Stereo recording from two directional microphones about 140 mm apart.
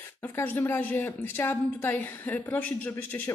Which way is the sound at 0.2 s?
15° left (ahead or behind).